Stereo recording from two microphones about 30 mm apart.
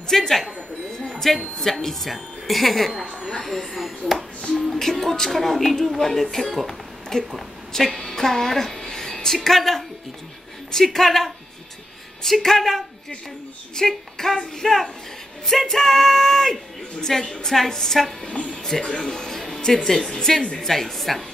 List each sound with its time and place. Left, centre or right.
0.1 s a woman's voice: centre
0.9 s a sound: centre
1.6 s a woman's voice: centre
3.7 s chopping: centre
4.7 s a woman's voice: centre
6.7 s music: centre
7.7 s a woman's voice: centre
17.9 s chopping: centre
18.4 s a woman's voice: left
20.5 s a woman's voice: centre